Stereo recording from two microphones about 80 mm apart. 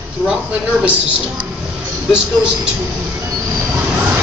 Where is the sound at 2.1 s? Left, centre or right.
Centre.